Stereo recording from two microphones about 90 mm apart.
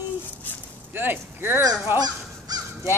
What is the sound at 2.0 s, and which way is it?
Honk, 45° right (ahead or behind).